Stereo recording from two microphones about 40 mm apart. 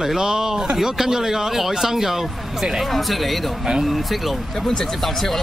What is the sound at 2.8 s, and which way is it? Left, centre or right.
Speech, centre.